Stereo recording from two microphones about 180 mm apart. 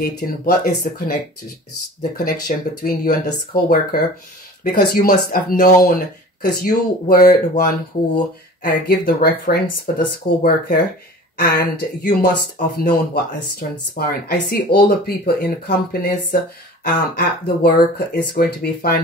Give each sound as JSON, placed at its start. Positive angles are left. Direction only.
{"t": 0.0, "sound": "speech", "side_deg": 55}
{"t": 2.1, "sound": "speech", "side_deg": 45}